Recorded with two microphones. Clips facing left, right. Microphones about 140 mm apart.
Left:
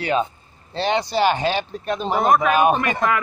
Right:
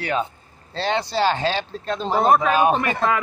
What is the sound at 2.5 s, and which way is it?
Speech, 15° left (ahead or behind).